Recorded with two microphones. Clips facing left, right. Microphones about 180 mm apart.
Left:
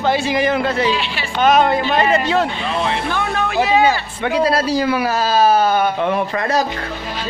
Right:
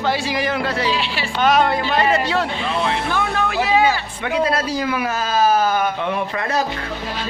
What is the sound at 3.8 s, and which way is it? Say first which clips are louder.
Speech: left 3 dB; 35° left (ahead or behind).